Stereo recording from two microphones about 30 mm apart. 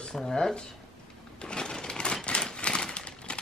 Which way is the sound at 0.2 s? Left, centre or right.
Centre.